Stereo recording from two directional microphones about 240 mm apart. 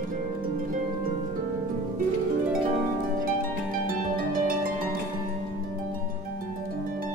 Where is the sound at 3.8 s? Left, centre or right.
Right.